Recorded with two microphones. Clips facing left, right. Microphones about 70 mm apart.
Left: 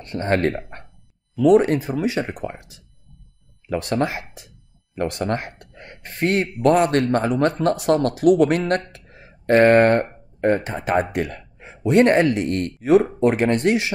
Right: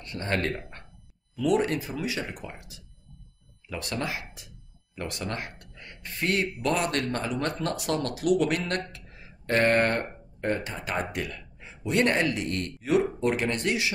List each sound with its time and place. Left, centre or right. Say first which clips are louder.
0.0 s speech: left 9 dB; left
0.6 s a sound: left 7 dB; left
1.5 s speech: left 9 dB; left
3.6 s speech: left 10 dB; left
8.9 s a sound: left 3 dB; left
10.4 s speech: left 9 dB; left